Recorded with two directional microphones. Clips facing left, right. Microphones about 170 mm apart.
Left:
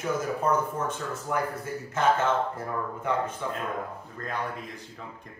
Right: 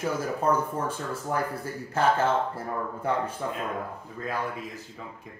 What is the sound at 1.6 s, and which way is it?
Speech, 35° right (ahead or behind).